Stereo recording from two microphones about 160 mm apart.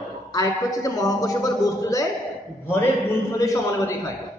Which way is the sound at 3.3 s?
20° left (ahead or behind).